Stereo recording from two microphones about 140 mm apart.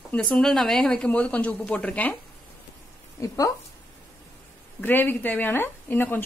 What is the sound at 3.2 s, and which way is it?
Speech, 25° left (ahead or behind).